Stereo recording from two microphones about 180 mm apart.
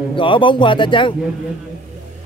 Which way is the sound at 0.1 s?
30° left (ahead or behind).